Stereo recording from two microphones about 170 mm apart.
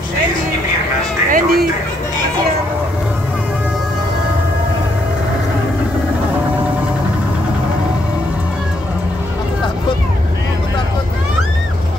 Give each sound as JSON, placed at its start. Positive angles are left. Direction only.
{"t": 1.3, "sound": "music", "side_deg": -65}